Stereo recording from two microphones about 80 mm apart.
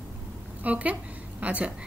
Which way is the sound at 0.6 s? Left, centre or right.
Centre.